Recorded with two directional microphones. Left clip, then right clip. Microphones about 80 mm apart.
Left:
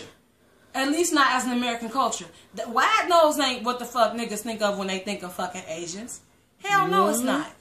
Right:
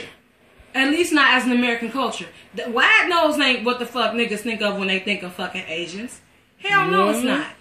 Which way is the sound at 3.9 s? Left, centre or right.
Left.